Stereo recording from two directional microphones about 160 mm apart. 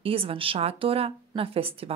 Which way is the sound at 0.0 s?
35° right (ahead or behind).